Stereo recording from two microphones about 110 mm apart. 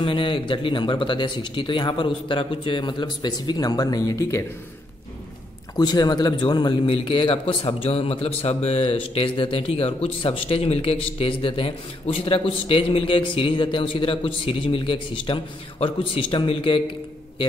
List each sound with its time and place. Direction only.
0.0 s speech: 50° left (ahead or behind); by 4.5 s 30° left (ahead or behind)
5.8 s speech: 40° left (ahead or behind)
6.9 s a man's voice: 55° left (ahead or behind)